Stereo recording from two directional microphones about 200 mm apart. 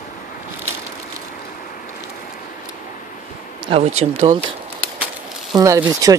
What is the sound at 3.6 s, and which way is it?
Speech, 30° right (ahead or behind).